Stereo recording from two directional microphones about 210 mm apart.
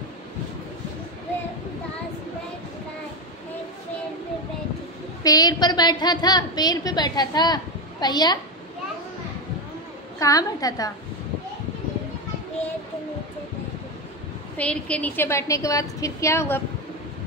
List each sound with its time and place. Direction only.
5.2 s a woman's voice: 15° left (ahead or behind)
10.1 s a woman's voice: 15° left (ahead or behind)
14.6 s a woman's voice: 5° left (ahead or behind)